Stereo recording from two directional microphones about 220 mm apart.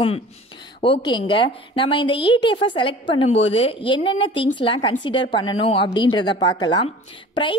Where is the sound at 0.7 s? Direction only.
25° left (ahead or behind).